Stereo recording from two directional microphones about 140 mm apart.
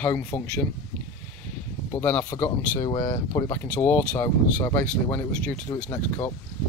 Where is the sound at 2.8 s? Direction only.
25° left (ahead or behind).